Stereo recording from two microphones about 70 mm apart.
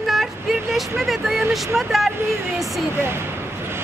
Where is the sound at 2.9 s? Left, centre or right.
Right.